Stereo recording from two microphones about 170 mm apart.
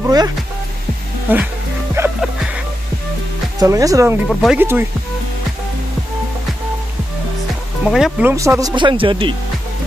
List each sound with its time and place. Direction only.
0.0 s speech: 25° right (ahead or behind)
1.3 s speech: 10° right (ahead or behind)
2.0 s music: 15° right (ahead or behind)
3.5 s speech: 20° right (ahead or behind)
4.3 s speech: centre (ahead or behind)
4.6 s speech: 10° right (ahead or behind)
7.9 s speech: 5° right (ahead or behind); by 9.3 s 30° right (ahead or behind)